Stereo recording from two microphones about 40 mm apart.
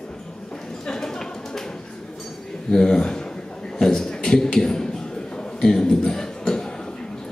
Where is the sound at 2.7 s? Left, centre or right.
Centre.